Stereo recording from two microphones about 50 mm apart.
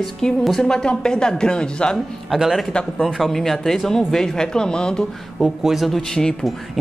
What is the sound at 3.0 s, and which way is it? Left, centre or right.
Speech, centre.